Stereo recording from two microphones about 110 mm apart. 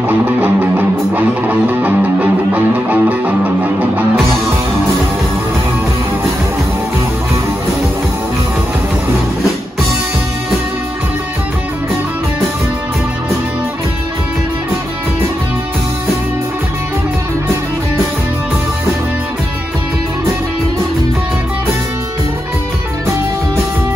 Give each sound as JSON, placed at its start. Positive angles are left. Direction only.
{"t": 0.1, "sound": "music", "side_deg": -20}